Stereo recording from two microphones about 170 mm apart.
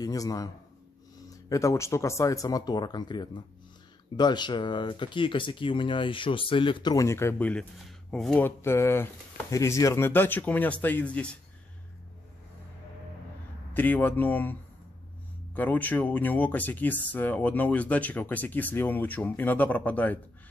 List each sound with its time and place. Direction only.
0.0 s speech: 20° left (ahead or behind)
13.7 s speech: 10° left (ahead or behind)